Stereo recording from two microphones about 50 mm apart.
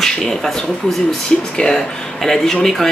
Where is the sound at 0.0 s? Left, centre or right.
Centre.